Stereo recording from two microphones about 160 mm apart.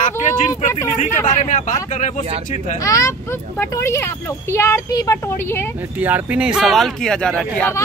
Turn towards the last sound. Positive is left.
turn(degrees=5)  # may be behind; listen again after turning